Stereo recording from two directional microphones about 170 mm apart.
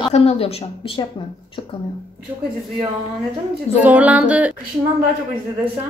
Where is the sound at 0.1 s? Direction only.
35° left (ahead or behind).